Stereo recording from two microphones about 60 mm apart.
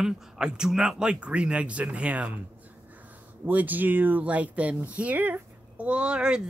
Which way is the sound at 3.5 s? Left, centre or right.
Right.